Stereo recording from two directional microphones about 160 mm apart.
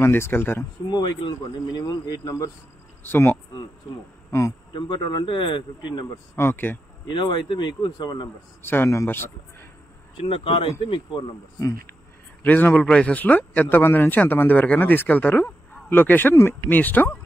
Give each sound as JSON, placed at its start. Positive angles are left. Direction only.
{"t": 0.0, "sound": "speech", "side_deg": 15}
{"t": 0.8, "sound": "speech", "side_deg": 25}
{"t": 4.7, "sound": "speech", "side_deg": 30}
{"t": 6.3, "sound": "speech", "side_deg": 15}
{"t": 7.1, "sound": "speech", "side_deg": 30}
{"t": 8.6, "sound": "speech", "side_deg": 15}
{"t": 10.1, "sound": "speech", "side_deg": 35}
{"t": 12.4, "sound": "speech", "side_deg": 10}